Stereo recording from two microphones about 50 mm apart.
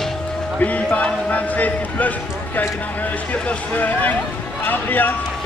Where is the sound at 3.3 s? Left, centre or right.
Left.